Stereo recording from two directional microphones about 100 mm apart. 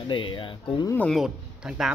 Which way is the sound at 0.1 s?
55° left (ahead or behind).